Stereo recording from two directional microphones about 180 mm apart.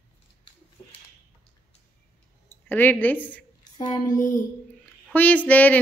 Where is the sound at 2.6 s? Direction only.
10° left (ahead or behind).